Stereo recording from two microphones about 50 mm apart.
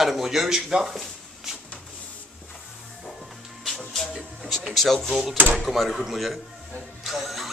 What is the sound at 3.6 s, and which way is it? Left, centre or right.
Music, centre.